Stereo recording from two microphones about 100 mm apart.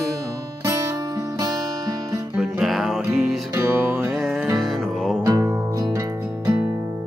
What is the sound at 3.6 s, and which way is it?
Music, 25° right (ahead or behind).